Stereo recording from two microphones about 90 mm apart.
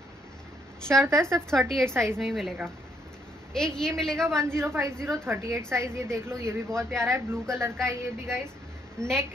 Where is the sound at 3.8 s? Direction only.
5° left (ahead or behind).